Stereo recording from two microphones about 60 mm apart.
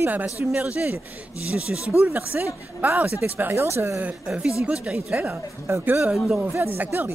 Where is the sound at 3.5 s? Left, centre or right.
Right.